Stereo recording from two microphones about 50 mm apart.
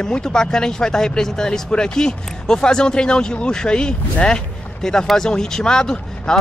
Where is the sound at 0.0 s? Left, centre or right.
Centre.